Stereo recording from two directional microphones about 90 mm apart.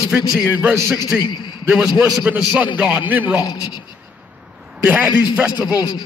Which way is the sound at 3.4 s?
50° left (ahead or behind).